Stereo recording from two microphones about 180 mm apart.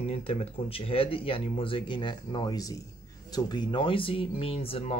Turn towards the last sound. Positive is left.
turn(degrees=35)  # may be behind; listen again after turning